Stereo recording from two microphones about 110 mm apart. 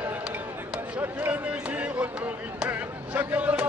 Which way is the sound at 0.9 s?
10° right (ahead or behind).